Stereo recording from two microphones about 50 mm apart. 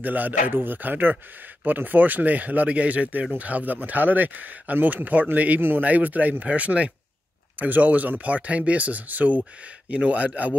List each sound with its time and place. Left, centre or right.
0.0 s speech: right